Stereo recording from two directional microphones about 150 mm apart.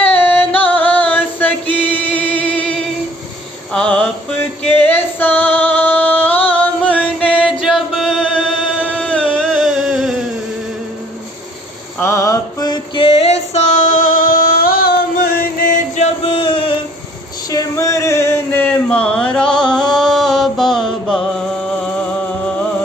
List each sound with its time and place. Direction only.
0.0 s music: 10° left (ahead or behind)
0.7 s a sound: 10° left (ahead or behind)
1.9 s music: 10° left (ahead or behind)
3.7 s mantra: 10° left (ahead or behind)
4.8 s female singing: 10° left (ahead or behind)
7.6 s music: centre (ahead or behind)
12.0 s mantra: 20° left (ahead or behind); by 15.7 s 90° left
16.0 s a sound: 40° left (ahead or behind)
17.5 s a sound: 20° left (ahead or behind); by 22.0 s 5° left (ahead or behind)